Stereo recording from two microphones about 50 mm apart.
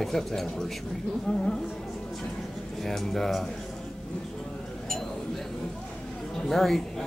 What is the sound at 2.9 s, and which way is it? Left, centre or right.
Speech, centre.